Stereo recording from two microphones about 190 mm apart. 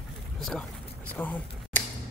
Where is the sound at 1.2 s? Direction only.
10° left (ahead or behind).